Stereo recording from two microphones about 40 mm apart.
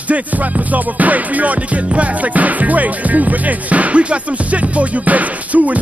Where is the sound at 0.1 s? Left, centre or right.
Right.